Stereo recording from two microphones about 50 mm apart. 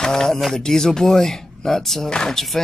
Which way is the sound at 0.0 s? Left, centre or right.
Centre.